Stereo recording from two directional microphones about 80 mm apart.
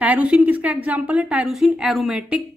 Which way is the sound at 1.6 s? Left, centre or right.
Centre.